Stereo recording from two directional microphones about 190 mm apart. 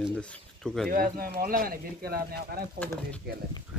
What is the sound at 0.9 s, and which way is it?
Speech, 50° right (ahead or behind).